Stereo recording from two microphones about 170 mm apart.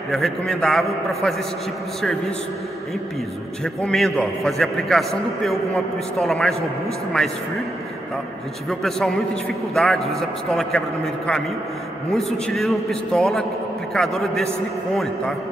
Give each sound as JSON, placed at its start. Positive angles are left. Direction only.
{"t": 0.1, "sound": "a man's voice", "side_deg": 0}
{"t": 3.6, "sound": "a man's voice", "side_deg": 5}
{"t": 8.6, "sound": "a man's voice", "side_deg": 5}
{"t": 12.1, "sound": "a man's voice", "side_deg": 5}